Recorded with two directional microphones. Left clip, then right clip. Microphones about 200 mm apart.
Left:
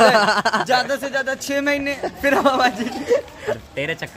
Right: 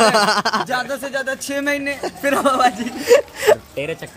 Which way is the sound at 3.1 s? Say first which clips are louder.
Right 6 dB; 35° right (ahead or behind).